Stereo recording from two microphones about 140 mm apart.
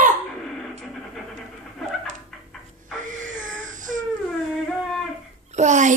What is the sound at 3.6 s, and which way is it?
Crying, 65° right (ahead or behind).